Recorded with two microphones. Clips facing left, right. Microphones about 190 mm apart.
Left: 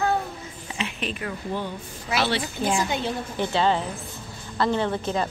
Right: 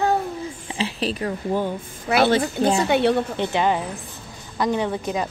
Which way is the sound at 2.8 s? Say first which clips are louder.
Right 9 dB; 70° right (ahead or behind).